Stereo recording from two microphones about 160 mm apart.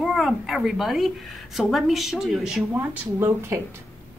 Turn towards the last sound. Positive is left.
turn(degrees=-15)  # may be behind; listen again after turning